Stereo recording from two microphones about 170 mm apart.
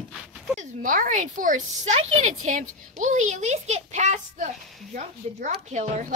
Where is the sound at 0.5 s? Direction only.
50° right (ahead or behind).